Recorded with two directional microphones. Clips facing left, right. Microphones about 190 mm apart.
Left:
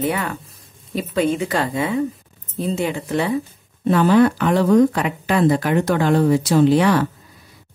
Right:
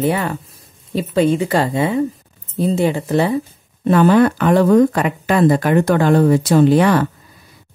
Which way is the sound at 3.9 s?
55° right (ahead or behind).